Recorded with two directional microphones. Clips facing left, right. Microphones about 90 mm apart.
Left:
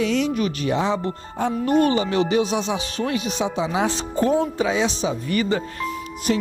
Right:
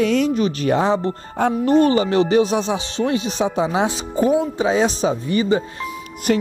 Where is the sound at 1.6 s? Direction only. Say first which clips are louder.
Right 3 dB; 30° right (ahead or behind).